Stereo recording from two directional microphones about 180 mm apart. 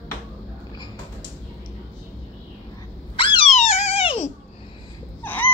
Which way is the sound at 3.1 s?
30° left (ahead or behind).